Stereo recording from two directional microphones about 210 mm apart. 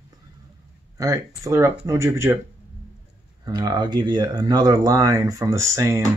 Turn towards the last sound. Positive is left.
turn(degrees=-15)  # may be behind; listen again after turning